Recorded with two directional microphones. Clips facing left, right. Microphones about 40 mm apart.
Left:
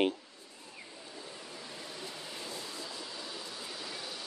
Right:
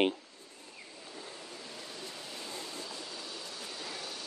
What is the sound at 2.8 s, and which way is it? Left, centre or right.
Vehicle, left.